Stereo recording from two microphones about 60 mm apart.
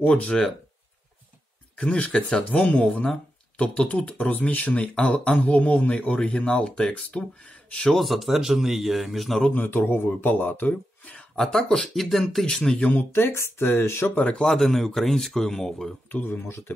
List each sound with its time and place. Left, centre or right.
0.0 s speech: centre
1.8 s speech: centre
7.9 s speech: centre
9.5 s speech: left
11.1 s speech: centre
12.7 s speech: left
13.1 s speech: left
14.4 s speech: centre
16.2 s speech: left